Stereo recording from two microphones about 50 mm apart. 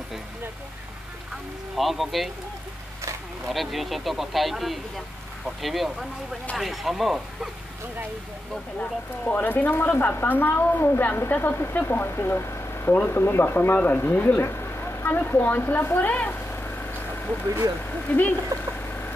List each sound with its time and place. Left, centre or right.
1.8 s speech: centre
3.4 s speech: centre
9.2 s a woman's voice: left
12.9 s speech: left
15.0 s speech: left
15.8 s a sound: left
17.8 s a woman's voice: left
18.5 s vehicle: right